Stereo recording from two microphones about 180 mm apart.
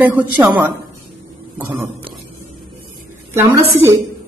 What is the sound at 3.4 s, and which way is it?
Speech, 15° right (ahead or behind).